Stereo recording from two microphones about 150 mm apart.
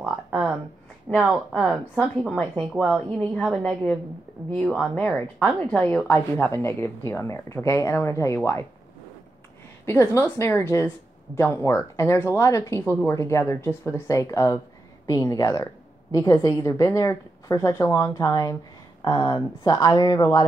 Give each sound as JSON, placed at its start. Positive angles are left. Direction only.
{"t": 0.0, "sound": "a sound", "side_deg": -10}
{"t": 1.1, "sound": "a woman's voice", "side_deg": 5}
{"t": 9.8, "sound": "a woman's voice", "side_deg": 15}